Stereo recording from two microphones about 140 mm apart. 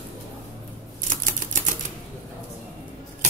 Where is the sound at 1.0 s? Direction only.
70° right (ahead or behind).